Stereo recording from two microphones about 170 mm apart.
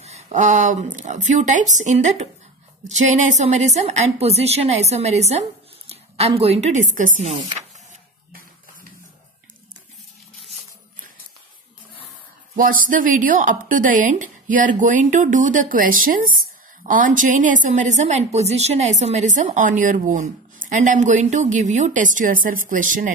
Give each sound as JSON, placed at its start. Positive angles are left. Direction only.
{"t": 0.0, "sound": "a woman's voice", "side_deg": -45}
{"t": 12.5, "sound": "speech", "side_deg": -55}